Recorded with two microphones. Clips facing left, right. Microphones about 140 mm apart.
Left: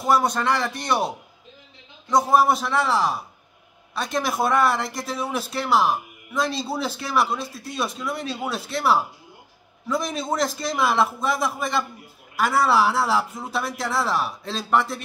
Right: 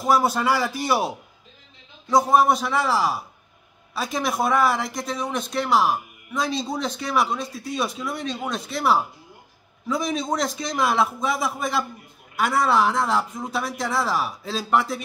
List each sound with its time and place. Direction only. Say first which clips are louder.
0.0 s speech: right 1 dB; centre (ahead or behind)